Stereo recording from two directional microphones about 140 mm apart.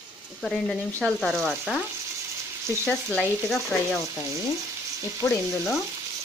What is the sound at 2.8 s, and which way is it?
Speech, 5° left (ahead or behind).